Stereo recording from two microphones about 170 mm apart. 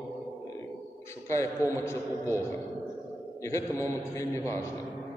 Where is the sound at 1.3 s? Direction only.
15° left (ahead or behind).